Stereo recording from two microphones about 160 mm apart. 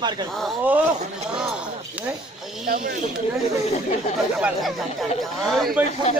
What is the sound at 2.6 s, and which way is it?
Speech, 65° right (ahead or behind).